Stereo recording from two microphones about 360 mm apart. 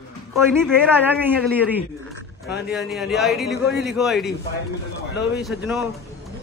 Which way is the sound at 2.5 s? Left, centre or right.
Left.